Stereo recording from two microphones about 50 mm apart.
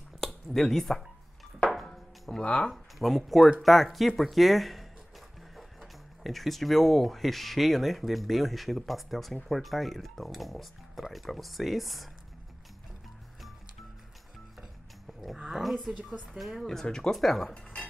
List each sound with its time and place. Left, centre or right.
0.2 s speech: centre
1.7 s music: centre
2.4 s speech: left
2.7 s speech: centre
15.5 s speech: centre
16.8 s speech: centre